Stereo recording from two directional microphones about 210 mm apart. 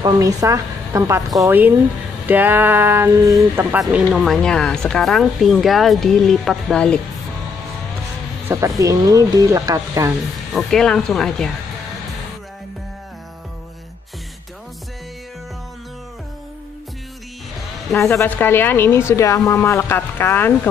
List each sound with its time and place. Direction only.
0.0 s speech: 15° right (ahead or behind); by 7.0 s 5° left (ahead or behind)
8.5 s speech: 15° right (ahead or behind)
10.5 s speech: 5° left (ahead or behind)
18.1 s a woman's voice: 10° left (ahead or behind)